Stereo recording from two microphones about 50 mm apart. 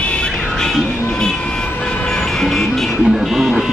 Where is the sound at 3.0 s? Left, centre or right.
Centre.